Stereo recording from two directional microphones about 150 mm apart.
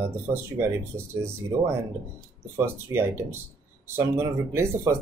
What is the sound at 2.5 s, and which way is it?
Speech, 15° right (ahead or behind).